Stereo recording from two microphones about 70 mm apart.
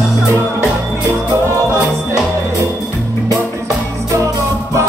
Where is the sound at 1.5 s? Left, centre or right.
Right.